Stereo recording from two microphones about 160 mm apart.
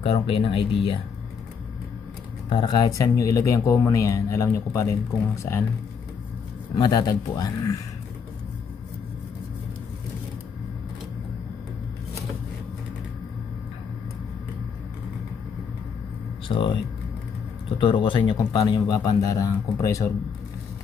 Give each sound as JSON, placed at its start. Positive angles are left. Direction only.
{"t": 0.0, "sound": "speech", "side_deg": 35}
{"t": 2.5, "sound": "speech", "side_deg": 25}
{"t": 6.7, "sound": "speech", "side_deg": 25}
{"t": 16.4, "sound": "speech", "side_deg": 30}